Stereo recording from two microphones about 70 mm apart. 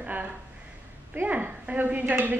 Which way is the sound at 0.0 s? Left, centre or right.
Right.